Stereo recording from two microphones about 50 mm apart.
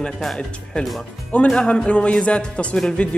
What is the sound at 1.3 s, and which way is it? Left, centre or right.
Speech, centre.